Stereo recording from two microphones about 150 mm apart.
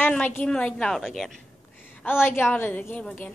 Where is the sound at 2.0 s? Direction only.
15° left (ahead or behind).